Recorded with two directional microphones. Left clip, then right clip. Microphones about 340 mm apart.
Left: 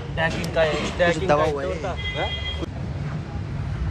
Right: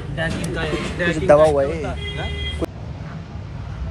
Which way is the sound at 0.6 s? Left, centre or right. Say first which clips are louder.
Left 5 dB; centre.